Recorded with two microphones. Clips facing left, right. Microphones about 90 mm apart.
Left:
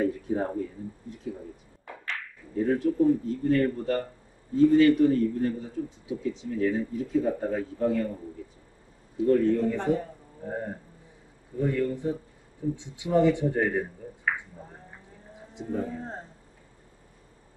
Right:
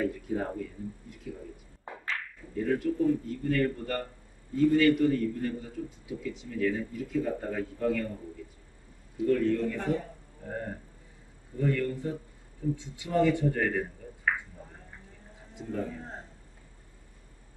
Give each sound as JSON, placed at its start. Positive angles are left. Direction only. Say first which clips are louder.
{"t": 0.0, "sound": "a sound", "louder": "left 4 dB", "side_deg": 30}
{"t": 2.5, "sound": "a man's voice", "louder": "left 4 dB", "side_deg": 30}
{"t": 9.2, "sound": "a man's voice", "louder": "left 4 dB", "side_deg": 25}
{"t": 15.5, "sound": "speech", "louder": "left 3 dB", "side_deg": 25}
{"t": 16.0, "sound": "a man's voice", "louder": "left 5 dB", "side_deg": 35}